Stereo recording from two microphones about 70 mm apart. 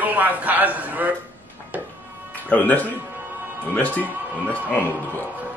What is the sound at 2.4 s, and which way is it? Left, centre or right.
Speech, left.